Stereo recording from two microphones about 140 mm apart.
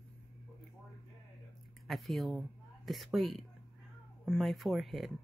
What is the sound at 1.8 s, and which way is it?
Speech, centre (ahead or behind).